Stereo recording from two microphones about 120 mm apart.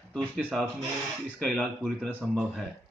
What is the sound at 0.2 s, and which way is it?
Speech, 15° right (ahead or behind).